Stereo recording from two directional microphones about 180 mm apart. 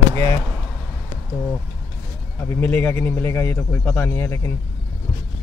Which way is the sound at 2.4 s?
10° left (ahead or behind).